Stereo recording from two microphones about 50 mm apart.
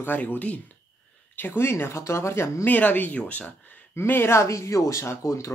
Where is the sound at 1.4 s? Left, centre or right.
Left.